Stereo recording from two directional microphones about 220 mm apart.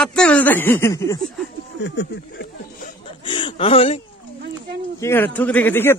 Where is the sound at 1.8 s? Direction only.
50° left (ahead or behind).